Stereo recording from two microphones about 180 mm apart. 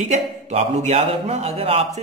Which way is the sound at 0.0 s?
40° right (ahead or behind).